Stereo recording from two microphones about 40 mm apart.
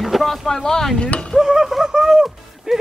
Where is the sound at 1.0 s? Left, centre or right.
Left.